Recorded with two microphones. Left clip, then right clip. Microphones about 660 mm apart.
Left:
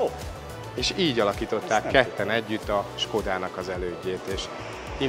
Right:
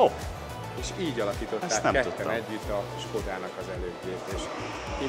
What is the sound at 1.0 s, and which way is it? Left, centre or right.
Speech, left.